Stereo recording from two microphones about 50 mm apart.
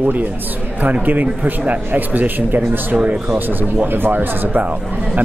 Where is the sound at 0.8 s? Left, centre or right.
Right.